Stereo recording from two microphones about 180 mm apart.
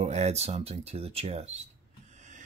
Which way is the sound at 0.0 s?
40° right (ahead or behind).